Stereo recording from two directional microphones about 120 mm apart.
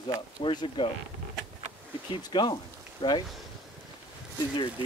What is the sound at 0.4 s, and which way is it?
Speech, 40° left (ahead or behind).